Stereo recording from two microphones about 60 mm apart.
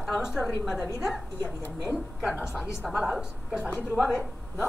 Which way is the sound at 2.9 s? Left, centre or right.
Centre.